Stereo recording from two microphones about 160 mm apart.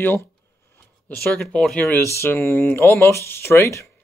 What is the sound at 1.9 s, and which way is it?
Speech, 15° left (ahead or behind).